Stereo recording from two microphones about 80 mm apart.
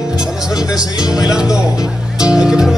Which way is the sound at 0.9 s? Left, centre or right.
Left.